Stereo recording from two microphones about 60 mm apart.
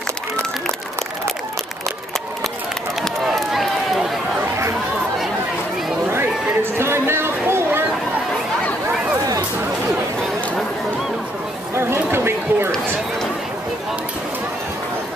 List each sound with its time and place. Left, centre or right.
3.0 s run: centre
6.1 s a sound: right
11.7 s chatter: right